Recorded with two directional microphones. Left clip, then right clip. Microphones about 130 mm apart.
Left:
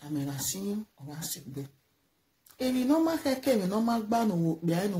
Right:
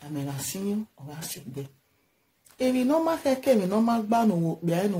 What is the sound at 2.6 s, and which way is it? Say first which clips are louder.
Speech: right 3 dB; 15° right (ahead or behind).